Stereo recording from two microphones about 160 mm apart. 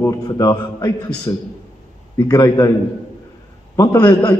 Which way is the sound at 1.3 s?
20° left (ahead or behind).